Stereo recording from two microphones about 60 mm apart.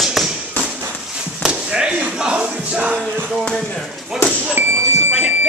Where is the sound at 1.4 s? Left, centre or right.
Centre.